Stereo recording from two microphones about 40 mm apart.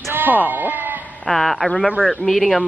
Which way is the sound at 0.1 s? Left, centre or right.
Right.